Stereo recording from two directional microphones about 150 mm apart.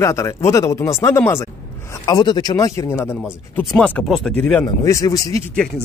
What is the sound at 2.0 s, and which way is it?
Speech, 30° left (ahead or behind).